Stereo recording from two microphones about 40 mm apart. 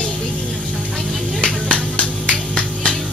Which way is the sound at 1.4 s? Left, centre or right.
Left.